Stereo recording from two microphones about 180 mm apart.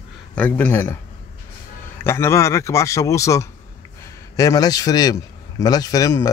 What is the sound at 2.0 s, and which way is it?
A man's voice, 15° left (ahead or behind).